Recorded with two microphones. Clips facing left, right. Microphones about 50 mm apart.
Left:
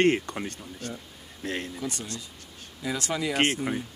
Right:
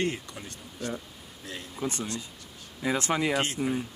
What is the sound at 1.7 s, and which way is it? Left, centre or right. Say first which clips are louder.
Speech: right 2 dB; right.